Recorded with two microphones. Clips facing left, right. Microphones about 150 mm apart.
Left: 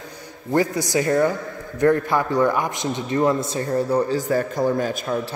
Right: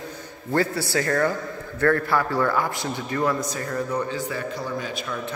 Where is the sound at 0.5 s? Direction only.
15° left (ahead or behind).